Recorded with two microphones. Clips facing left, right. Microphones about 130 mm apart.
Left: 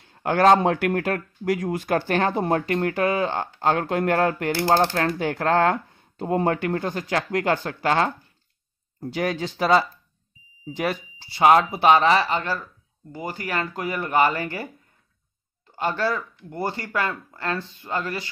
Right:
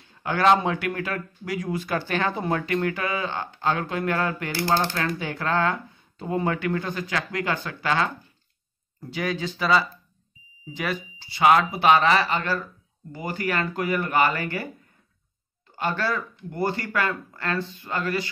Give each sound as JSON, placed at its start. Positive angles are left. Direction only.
{"t": 0.1, "sound": "speech", "side_deg": 50}
{"t": 15.8, "sound": "speech", "side_deg": 20}